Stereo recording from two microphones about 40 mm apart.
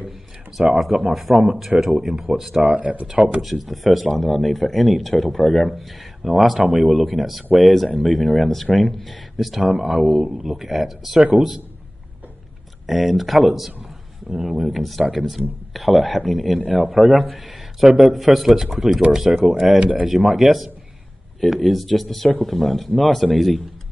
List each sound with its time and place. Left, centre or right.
0.6 s speech: centre
0.9 s speech: centre
2.6 s speech: right
3.1 s speech: right
3.4 s speech: centre
9.6 s speech: centre
11.1 s speech: right
12.8 s speech: centre
14.3 s speech: centre
14.6 s speech: centre
15.7 s speech: centre
19.8 s speech: right
20.1 s speech: centre